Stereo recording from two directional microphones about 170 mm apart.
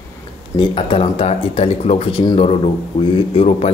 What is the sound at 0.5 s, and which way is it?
A man's voice, 30° left (ahead or behind).